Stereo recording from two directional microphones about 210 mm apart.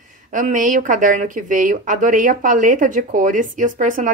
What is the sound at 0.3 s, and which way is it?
Speech, 35° right (ahead or behind).